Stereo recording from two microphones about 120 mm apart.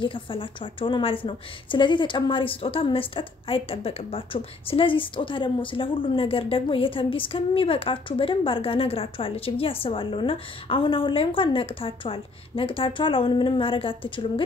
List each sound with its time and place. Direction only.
0.0 s a woman's voice: 45° left (ahead or behind)